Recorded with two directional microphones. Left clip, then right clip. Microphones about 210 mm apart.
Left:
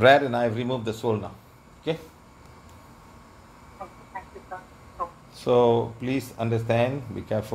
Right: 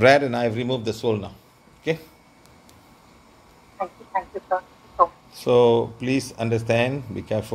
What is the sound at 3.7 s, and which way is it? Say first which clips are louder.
Speech: right 12 dB; 40° right (ahead or behind).